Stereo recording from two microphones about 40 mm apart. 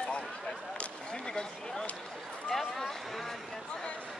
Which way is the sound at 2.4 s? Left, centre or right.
Centre.